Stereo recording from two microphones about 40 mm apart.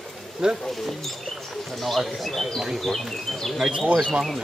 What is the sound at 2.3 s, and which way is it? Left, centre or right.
Speech, centre.